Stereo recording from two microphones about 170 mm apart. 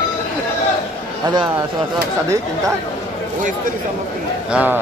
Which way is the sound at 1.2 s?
25° right (ahead or behind).